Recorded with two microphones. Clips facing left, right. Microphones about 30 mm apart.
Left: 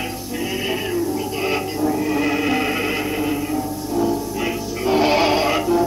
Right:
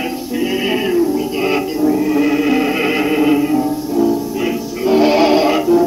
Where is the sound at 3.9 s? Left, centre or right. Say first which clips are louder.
Right 4 dB; centre.